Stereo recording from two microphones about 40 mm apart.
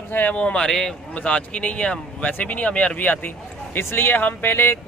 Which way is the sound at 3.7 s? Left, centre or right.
Left.